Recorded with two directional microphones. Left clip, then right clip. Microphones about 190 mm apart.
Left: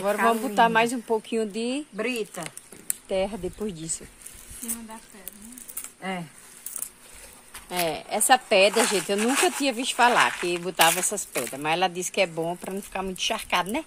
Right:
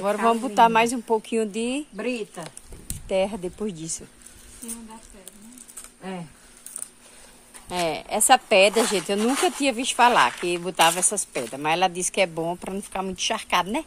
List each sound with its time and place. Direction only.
0.0 s speech: 10° right (ahead or behind)
3.1 s speech: 10° right (ahead or behind)
7.7 s speech: 15° right (ahead or behind)